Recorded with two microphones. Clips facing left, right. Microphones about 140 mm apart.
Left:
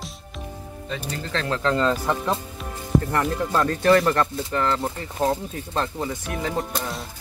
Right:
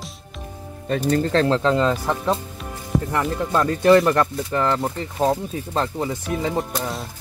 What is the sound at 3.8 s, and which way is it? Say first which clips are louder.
Speech: right 4 dB; 20° right (ahead or behind).